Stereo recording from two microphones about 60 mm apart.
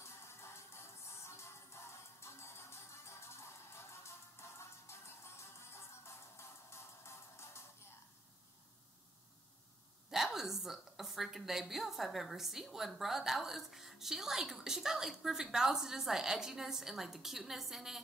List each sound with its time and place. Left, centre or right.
0.0 s music: left
10.1 s a woman's voice: centre